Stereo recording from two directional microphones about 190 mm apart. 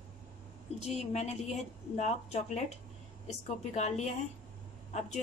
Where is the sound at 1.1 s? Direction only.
35° left (ahead or behind).